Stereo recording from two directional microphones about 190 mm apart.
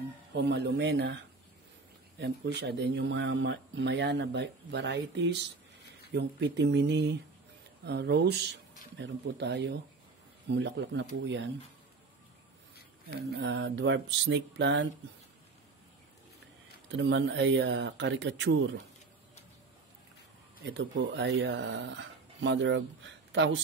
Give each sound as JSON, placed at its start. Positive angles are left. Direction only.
{"t": 0.3, "sound": "speech", "side_deg": -65}
{"t": 13.3, "sound": "speech", "side_deg": -70}
{"t": 16.9, "sound": "speech", "side_deg": -75}
{"t": 20.6, "sound": "speech", "side_deg": -70}